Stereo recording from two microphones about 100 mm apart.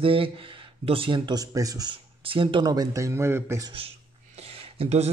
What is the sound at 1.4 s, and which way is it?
Speech, 35° right (ahead or behind).